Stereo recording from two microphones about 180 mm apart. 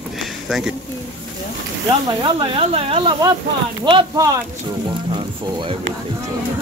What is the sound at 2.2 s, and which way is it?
Speech, 30° right (ahead or behind).